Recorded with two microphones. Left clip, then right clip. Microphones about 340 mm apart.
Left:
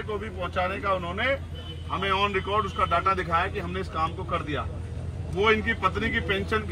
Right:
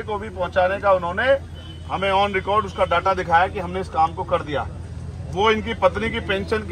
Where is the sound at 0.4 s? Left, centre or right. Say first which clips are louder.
Right 10 dB; right.